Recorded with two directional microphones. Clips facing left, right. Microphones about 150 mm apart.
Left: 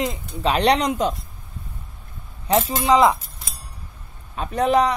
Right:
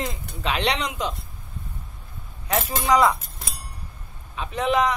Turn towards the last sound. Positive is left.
turn(degrees=35)  # may be behind; listen again after turning